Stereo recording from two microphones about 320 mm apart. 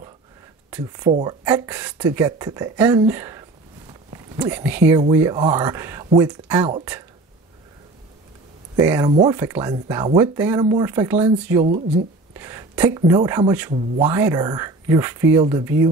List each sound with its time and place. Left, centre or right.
0.7 s speech: centre
8.7 s speech: centre
11.6 s speech: right
12.4 s speech: centre